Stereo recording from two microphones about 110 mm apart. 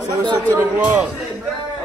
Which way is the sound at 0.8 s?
15° right (ahead or behind).